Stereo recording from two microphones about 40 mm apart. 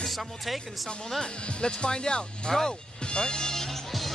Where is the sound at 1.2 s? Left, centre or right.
Left.